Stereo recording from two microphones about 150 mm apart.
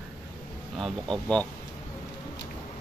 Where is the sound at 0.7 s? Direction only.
Centre (ahead or behind).